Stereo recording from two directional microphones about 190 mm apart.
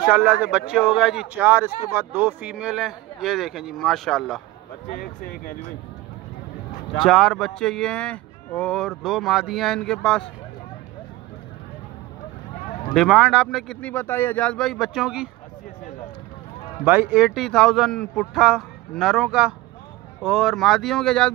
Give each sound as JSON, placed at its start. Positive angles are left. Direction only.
{"t": 0.1, "sound": "speech", "side_deg": -5}
{"t": 4.8, "sound": "speech", "side_deg": 50}
{"t": 7.1, "sound": "speech", "side_deg": 0}
{"t": 12.9, "sound": "speech", "side_deg": 0}
{"t": 16.8, "sound": "speech", "side_deg": -10}